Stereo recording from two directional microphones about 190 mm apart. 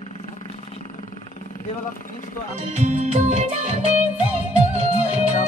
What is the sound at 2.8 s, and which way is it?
Music, 40° right (ahead or behind).